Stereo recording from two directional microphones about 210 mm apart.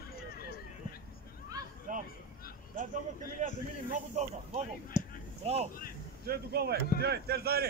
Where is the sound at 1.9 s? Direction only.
40° right (ahead or behind).